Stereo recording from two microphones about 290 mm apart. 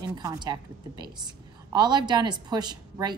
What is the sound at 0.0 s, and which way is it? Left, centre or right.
A woman's voice, centre.